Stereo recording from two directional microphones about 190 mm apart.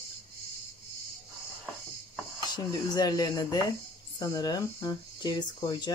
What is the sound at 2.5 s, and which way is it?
Speech, 20° left (ahead or behind).